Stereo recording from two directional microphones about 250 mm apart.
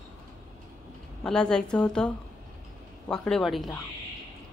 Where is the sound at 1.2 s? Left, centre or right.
Centre.